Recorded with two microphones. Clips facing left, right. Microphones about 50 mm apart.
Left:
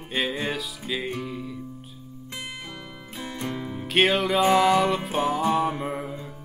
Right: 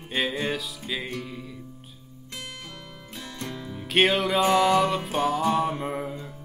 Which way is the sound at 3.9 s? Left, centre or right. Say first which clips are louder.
Even; centre.